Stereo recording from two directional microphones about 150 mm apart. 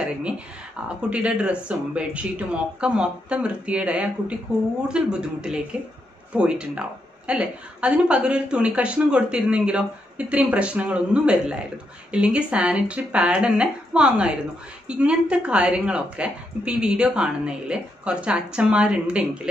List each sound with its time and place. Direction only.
0.8 s a woman's voice: 5° right (ahead or behind)